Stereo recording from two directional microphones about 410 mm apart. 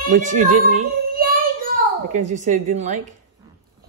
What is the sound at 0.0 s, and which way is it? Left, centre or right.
Speech, centre.